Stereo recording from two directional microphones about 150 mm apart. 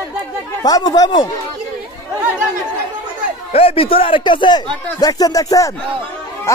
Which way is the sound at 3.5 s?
40° left (ahead or behind).